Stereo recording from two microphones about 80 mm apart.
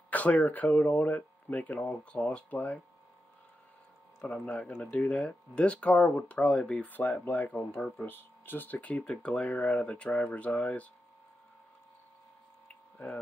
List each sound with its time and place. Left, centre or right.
0.1 s speech: centre
4.3 s speech: centre
12.9 s speech: centre